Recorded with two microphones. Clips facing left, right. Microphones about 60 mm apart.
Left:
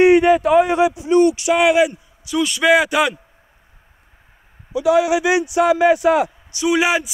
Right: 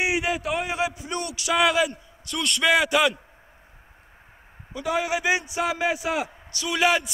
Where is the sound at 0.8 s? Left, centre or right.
Centre.